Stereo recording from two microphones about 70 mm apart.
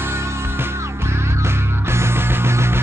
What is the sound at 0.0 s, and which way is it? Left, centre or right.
Music, right.